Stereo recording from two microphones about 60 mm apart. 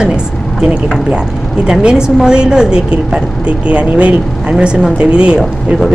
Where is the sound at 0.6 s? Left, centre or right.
Centre.